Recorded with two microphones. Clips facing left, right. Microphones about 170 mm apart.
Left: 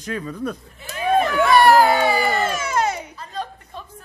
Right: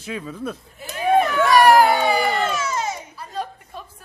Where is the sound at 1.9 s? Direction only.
5° left (ahead or behind).